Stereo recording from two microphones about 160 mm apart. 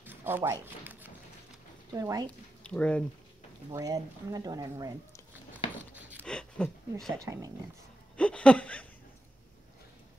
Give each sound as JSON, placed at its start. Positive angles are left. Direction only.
{"t": 0.0, "sound": "shuffling cards", "side_deg": -15}
{"t": 1.9, "sound": "speech", "side_deg": -20}
{"t": 2.2, "sound": "speech", "side_deg": 5}
{"t": 3.7, "sound": "speech", "side_deg": -20}
{"t": 5.9, "sound": "dog", "side_deg": -10}
{"t": 6.2, "sound": "speech", "side_deg": 5}
{"t": 7.2, "sound": "speech", "side_deg": -20}
{"t": 8.2, "sound": "a sound", "side_deg": 5}